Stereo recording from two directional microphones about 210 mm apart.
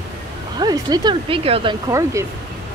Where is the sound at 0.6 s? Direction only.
20° right (ahead or behind).